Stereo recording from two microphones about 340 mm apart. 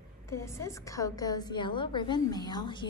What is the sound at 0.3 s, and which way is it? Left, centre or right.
A woman's voice, centre.